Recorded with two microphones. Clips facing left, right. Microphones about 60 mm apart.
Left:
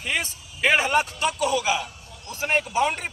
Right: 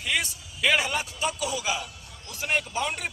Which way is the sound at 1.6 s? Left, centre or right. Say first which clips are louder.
Left 5 dB; left.